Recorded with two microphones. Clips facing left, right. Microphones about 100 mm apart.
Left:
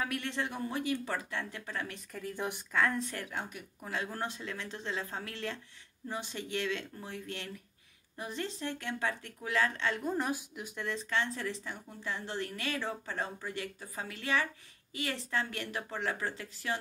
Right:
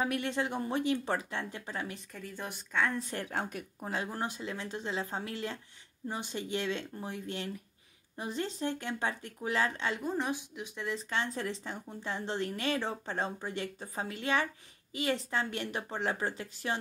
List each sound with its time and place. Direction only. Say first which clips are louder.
0.0 s a woman's voice: right 3 dB; 20° right (ahead or behind)
2.3 s a woman's voice: left 4 dB; 15° left (ahead or behind)
3.1 s a woman's voice: right 3 dB; 30° right (ahead or behind)
3.3 s speech: right 5 dB; 50° right (ahead or behind)
3.8 s a woman's voice: right 1 dB; 25° right (ahead or behind)
10.0 s speech: even; centre (ahead or behind)
11.1 s a woman's voice: left 1 dB; 20° right (ahead or behind)